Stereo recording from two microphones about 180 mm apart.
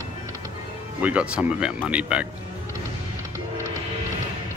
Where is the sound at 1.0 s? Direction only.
5° right (ahead or behind).